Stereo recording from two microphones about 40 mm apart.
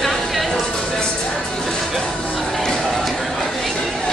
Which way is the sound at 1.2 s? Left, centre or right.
Left.